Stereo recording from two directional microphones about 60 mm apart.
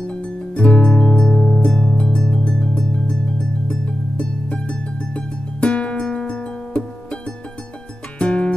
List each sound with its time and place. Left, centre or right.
0.0 s music: centre
8.2 s music: centre